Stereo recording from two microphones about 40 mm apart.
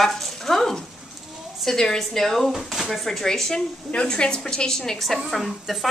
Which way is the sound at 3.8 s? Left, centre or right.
Left.